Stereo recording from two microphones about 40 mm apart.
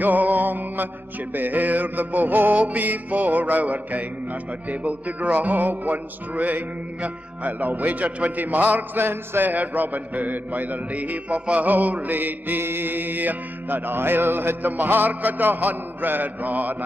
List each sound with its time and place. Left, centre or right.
0.0 s music: right
9.0 s music: right
9.5 s music: right
12.6 s music: right
14.6 s music: right